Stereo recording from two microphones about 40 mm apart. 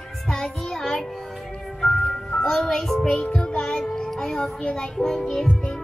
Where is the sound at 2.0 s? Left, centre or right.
Centre.